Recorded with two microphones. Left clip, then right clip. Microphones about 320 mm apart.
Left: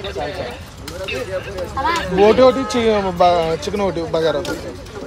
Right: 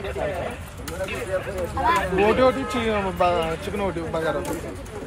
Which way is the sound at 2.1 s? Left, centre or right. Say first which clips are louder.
Left 12 dB; left.